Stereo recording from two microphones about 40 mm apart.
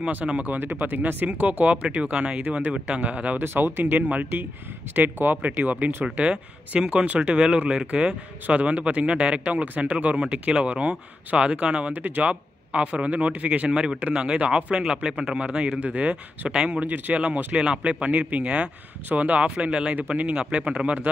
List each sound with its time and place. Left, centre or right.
0.5 s speech: right
1.4 s speech: right
3.3 s speech: right
3.8 s speech: right
16.8 s speech: right
17.1 s speech: right
17.6 s speech: right